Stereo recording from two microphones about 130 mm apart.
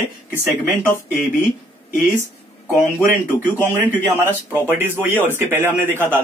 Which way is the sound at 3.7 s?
15° right (ahead or behind).